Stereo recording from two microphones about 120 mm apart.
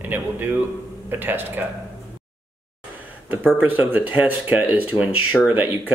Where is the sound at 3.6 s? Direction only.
15° right (ahead or behind).